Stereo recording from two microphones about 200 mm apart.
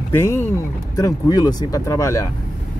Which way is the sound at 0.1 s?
15° left (ahead or behind).